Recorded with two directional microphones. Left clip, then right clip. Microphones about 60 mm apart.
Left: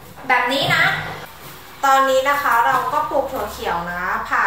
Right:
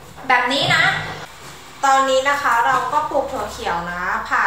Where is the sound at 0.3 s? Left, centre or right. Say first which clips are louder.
Right 1 dB; centre.